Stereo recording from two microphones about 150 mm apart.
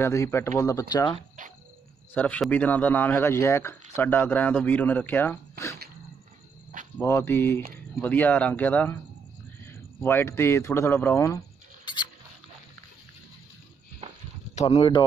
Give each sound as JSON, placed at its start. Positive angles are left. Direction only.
{"t": 0.0, "sound": "speech", "side_deg": 20}
{"t": 2.1, "sound": "speech", "side_deg": 10}
{"t": 7.0, "sound": "speech", "side_deg": 15}
{"t": 11.8, "sound": "rodents", "side_deg": 30}
{"t": 14.5, "sound": "speech", "side_deg": 45}